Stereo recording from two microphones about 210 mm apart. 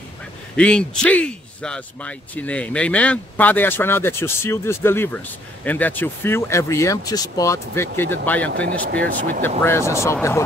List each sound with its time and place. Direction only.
0.6 s speech: 5° left (ahead or behind)
8.9 s speech: 45° right (ahead or behind)
9.6 s speech: 10° left (ahead or behind)